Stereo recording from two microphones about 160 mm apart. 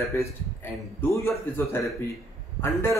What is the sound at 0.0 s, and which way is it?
A man's voice, 15° left (ahead or behind).